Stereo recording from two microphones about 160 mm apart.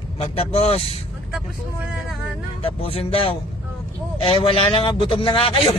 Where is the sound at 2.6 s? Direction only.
35° left (ahead or behind).